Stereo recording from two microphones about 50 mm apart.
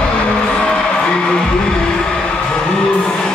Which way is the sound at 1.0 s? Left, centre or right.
Centre.